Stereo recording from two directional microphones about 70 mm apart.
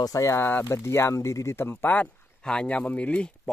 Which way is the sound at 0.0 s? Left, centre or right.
Left.